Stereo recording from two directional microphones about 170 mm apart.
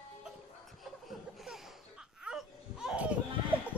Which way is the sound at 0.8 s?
Centre (ahead or behind).